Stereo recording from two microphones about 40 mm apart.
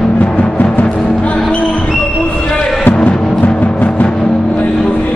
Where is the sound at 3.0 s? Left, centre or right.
Left.